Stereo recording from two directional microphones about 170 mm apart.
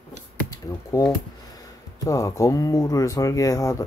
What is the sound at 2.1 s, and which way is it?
Speech, 20° left (ahead or behind).